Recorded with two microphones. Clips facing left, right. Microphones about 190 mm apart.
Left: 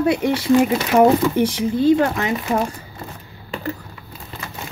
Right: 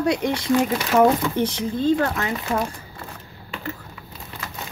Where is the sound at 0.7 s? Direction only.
20° left (ahead or behind).